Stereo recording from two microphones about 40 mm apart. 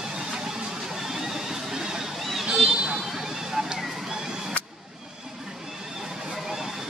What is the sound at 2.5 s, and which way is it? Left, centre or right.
Vehicle, centre.